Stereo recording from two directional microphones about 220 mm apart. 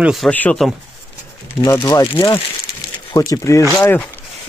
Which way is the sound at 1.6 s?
15° left (ahead or behind).